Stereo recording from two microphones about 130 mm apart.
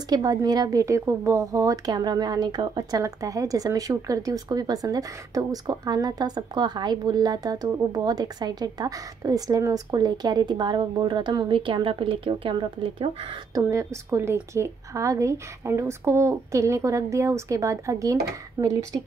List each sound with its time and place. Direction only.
0.1 s a woman's voice: 30° right (ahead or behind); by 13.4 s 45° right (ahead or behind)
13.6 s a woman's voice: 25° right (ahead or behind)